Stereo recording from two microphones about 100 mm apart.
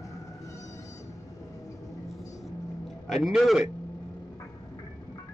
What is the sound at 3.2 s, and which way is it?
Speech, centre (ahead or behind).